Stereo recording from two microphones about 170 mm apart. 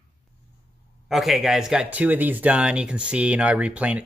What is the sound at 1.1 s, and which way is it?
Speech, centre (ahead or behind).